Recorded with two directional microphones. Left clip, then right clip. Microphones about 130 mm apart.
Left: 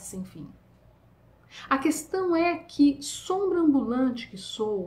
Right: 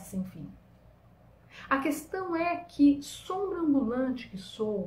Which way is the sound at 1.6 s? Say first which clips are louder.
Left 3 dB; 25° left (ahead or behind).